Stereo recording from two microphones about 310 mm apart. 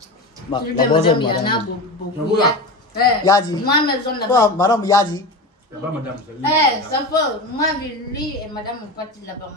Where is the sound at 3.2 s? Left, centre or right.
Centre.